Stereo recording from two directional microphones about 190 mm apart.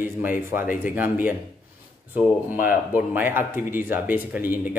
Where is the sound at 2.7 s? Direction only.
10° right (ahead or behind).